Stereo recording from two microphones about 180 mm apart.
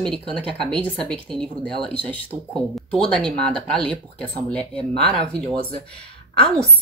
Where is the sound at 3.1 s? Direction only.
5° left (ahead or behind).